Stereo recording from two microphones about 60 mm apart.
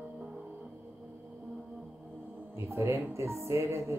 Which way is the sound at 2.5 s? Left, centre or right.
Right.